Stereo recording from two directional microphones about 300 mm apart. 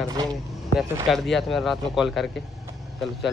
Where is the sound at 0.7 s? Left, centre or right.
Centre.